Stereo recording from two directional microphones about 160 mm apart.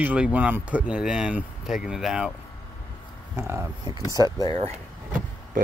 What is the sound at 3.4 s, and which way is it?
Speech, 15° right (ahead or behind).